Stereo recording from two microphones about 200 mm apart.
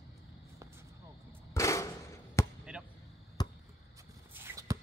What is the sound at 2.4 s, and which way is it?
Basketball bounce, 15° left (ahead or behind).